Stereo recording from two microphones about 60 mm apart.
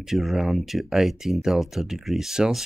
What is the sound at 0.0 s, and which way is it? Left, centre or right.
Speech, centre.